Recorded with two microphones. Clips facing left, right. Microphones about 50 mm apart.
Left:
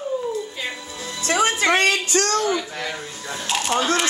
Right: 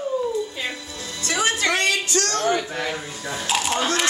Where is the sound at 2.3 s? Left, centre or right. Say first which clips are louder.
Right 2 dB; right.